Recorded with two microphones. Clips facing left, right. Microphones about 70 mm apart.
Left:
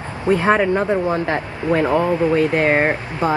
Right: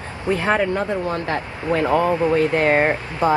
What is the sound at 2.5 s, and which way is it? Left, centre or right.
Speech, centre.